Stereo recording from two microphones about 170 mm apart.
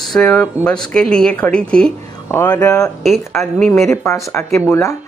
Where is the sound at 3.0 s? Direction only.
Centre (ahead or behind).